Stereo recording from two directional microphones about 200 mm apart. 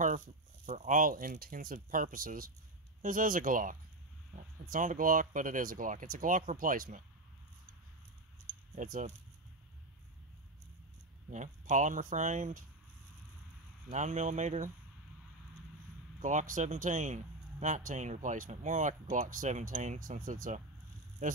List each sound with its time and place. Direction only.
0.7 s speech: 40° right (ahead or behind)
8.7 s speech: 40° right (ahead or behind)
11.2 s speech: 40° right (ahead or behind)
13.8 s speech: 35° right (ahead or behind)
16.2 s speech: 40° right (ahead or behind)